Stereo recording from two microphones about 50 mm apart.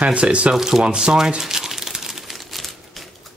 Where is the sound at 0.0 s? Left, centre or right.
Right.